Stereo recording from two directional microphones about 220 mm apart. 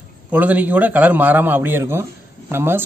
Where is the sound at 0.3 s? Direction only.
5° right (ahead or behind).